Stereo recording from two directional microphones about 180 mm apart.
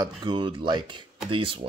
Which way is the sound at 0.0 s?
25° right (ahead or behind).